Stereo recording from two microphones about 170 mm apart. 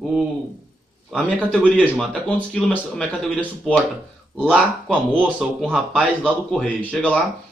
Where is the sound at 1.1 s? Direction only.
5° left (ahead or behind).